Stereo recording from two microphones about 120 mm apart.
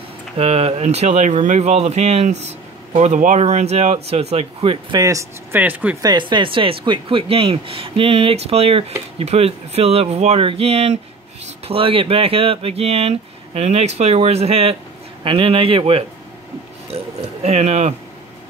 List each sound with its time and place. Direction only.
0.4 s speech: 55° right (ahead or behind)
4.9 s speech: 30° right (ahead or behind)
5.5 s speech: 15° right (ahead or behind)
6.0 s speech: 40° right (ahead or behind)
16.9 s speech: 65° right (ahead or behind)